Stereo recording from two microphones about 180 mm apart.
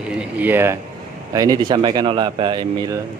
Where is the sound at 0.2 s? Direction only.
10° right (ahead or behind).